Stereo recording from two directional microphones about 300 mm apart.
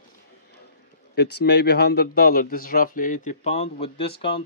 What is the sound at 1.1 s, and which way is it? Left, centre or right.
Speech, left.